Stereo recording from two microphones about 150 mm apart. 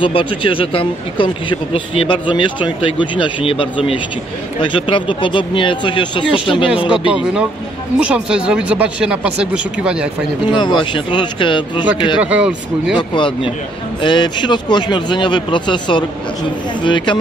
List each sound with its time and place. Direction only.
0.0 s speech: 35° left (ahead or behind)
7.1 s speech: 5° right (ahead or behind)
10.5 s speech: 30° left (ahead or behind)
12.2 s speech: 10° right (ahead or behind)
12.9 s speech: 35° left (ahead or behind)